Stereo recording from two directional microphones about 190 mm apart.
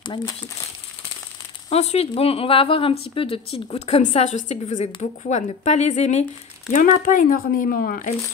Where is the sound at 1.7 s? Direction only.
35° left (ahead or behind).